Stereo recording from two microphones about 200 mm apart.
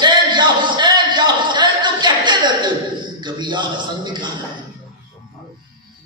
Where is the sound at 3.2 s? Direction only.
20° right (ahead or behind).